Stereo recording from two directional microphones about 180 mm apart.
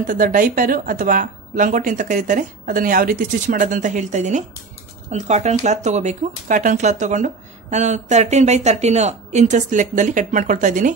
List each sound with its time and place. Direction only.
0.0 s a woman's voice: 50° right (ahead or behind)